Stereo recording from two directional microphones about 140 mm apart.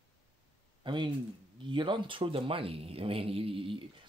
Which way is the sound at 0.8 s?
35° right (ahead or behind).